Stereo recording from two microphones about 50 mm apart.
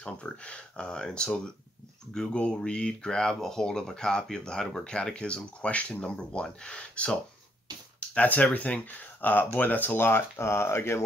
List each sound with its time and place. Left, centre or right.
0.0 s speech: left
2.3 s speech: left
8.2 s speech: left
10.3 s speech: left